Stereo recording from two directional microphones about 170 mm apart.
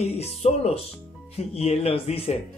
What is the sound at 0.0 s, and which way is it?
Speech, 40° left (ahead or behind).